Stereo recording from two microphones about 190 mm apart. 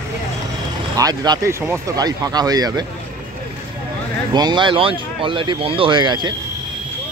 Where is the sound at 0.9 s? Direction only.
20° right (ahead or behind).